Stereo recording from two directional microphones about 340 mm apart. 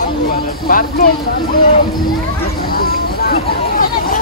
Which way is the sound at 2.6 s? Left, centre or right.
Left.